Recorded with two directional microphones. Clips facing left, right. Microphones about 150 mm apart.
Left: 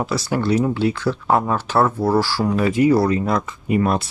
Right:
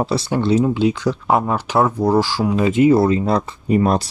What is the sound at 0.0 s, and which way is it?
Speech, 25° right (ahead or behind).